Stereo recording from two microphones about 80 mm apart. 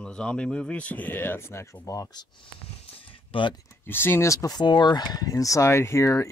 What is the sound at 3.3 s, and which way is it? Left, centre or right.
Speech, left.